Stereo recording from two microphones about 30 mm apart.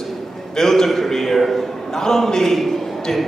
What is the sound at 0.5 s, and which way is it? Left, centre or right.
A man's voice, centre.